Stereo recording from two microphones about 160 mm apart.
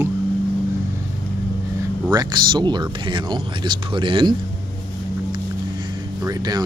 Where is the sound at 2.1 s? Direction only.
25° right (ahead or behind).